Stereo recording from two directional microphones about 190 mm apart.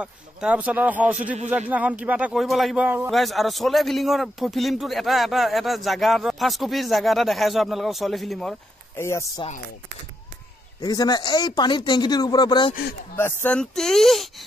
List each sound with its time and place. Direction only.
0.0 s speech: 5° right (ahead or behind)
8.9 s speech: 15° left (ahead or behind)
10.8 s speech: 20° left (ahead or behind)
13.1 s speech: 10° left (ahead or behind)